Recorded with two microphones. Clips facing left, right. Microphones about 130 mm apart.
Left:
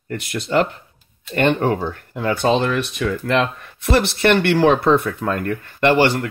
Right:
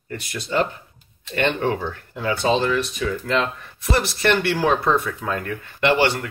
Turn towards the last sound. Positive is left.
turn(degrees=50)  # may be behind; listen again after turning